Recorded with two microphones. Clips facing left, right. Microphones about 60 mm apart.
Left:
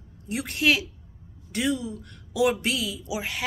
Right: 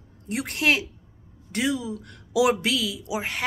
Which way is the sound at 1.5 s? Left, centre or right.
Right.